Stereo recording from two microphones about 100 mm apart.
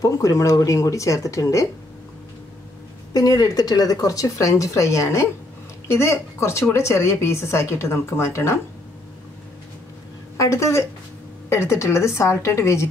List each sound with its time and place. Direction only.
0.0 s speech: 35° left (ahead or behind)
3.1 s a woman's voice: 40° left (ahead or behind)
10.3 s a woman's voice: 30° left (ahead or behind)